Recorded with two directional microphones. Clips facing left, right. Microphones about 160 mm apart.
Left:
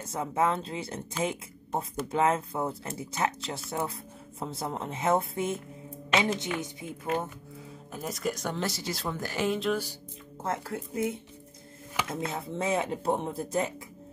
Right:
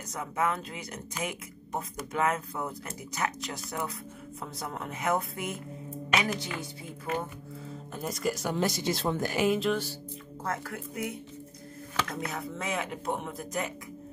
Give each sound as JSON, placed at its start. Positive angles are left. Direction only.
{"t": 0.0, "sound": "speech", "side_deg": 30}
{"t": 7.9, "sound": "speech", "side_deg": 0}
{"t": 10.4, "sound": "speech", "side_deg": 25}